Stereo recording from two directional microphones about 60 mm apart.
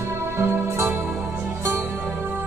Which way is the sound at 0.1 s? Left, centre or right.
Right.